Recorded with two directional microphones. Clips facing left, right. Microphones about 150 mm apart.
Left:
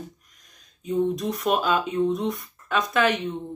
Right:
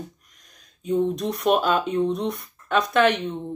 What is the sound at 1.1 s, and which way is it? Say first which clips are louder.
A woman's voice: right 3 dB; centre (ahead or behind).